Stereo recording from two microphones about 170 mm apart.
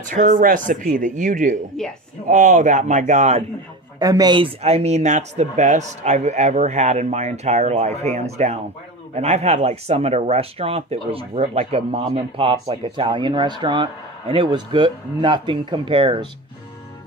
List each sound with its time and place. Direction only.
0.0 s speech: 50° right (ahead or behind)
4.0 s speech: 20° right (ahead or behind)